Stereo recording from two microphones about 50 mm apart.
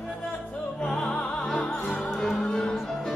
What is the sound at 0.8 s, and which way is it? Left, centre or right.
Music, centre.